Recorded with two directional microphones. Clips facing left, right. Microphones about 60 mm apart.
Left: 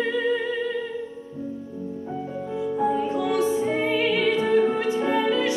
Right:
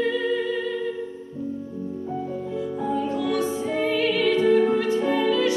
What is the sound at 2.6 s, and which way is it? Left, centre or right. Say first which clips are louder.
Music: left 4 dB; left.